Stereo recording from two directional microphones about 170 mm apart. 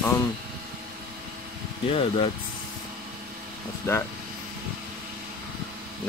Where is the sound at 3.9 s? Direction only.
15° left (ahead or behind).